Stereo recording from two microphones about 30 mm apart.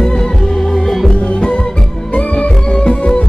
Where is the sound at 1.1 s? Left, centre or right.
Left.